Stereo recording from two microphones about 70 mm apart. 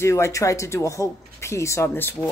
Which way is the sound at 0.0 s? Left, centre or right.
Left.